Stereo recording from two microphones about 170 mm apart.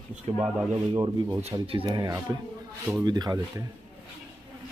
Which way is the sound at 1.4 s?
35° right (ahead or behind).